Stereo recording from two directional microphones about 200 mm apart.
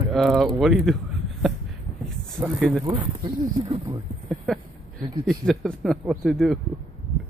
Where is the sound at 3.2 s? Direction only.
25° right (ahead or behind).